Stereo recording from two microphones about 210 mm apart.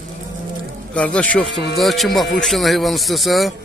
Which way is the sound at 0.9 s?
5° left (ahead or behind).